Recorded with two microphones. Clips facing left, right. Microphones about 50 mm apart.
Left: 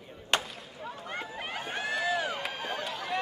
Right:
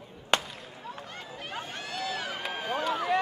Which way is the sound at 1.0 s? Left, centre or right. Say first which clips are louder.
Left 4 dB; left.